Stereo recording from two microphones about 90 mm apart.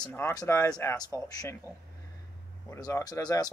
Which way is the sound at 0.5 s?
25° left (ahead or behind).